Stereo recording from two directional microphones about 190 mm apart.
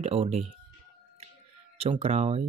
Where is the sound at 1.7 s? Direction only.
35° right (ahead or behind).